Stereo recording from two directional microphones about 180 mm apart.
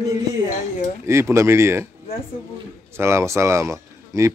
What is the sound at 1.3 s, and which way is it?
Speech, 15° right (ahead or behind).